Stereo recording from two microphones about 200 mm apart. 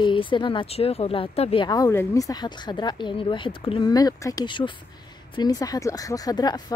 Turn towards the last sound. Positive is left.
turn(degrees=20)  # may be behind; listen again after turning